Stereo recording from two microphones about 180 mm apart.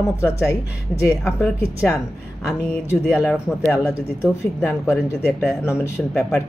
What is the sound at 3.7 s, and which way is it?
Speech, 15° left (ahead or behind).